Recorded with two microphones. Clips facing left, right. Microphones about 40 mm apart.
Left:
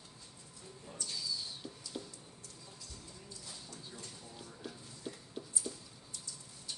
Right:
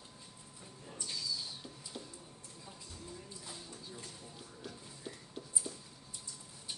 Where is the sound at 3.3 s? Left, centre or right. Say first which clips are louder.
Right 2 dB; centre.